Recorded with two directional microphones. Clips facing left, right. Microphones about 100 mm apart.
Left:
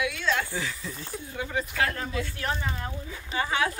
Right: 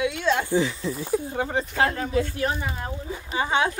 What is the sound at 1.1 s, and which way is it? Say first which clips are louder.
Speech: right 6 dB; 40° right (ahead or behind).